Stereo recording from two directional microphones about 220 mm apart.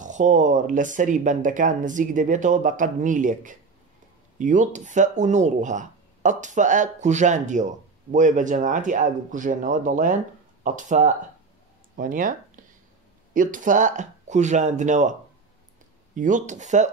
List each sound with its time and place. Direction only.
0.0 s speech: 35° right (ahead or behind)
16.2 s speech: 35° right (ahead or behind)